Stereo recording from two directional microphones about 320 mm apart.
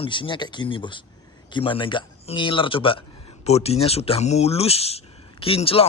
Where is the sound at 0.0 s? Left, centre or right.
Centre.